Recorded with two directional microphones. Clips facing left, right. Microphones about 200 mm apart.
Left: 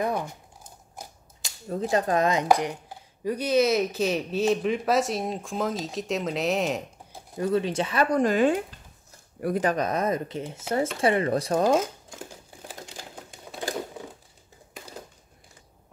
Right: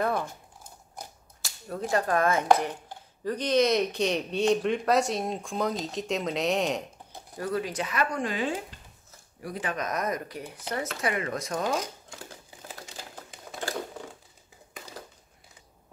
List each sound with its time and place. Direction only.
0.0 s speech: 15° left (ahead or behind)
1.4 s speech: 20° left (ahead or behind); by 6.8 s centre (ahead or behind)
7.3 s speech: 25° left (ahead or behind)
13.6 s a sound: 15° left (ahead or behind)